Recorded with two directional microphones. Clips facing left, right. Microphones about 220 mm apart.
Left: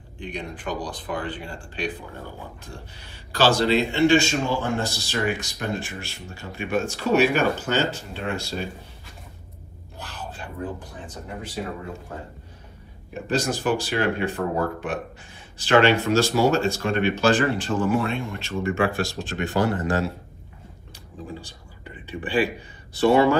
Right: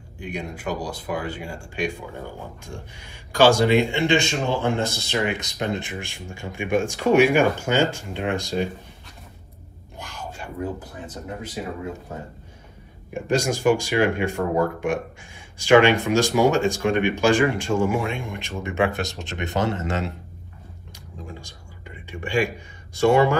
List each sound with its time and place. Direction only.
0.2 s speech: 10° right (ahead or behind)
9.9 s a sound: 10° right (ahead or behind)
13.1 s speech: 15° right (ahead or behind)
22.0 s speech: 15° right (ahead or behind)